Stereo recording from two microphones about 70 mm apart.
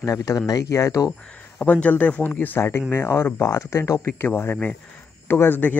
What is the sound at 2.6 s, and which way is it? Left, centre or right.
Speech, left.